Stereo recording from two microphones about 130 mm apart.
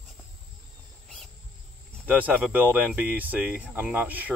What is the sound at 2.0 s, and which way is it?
Speech, 15° right (ahead or behind).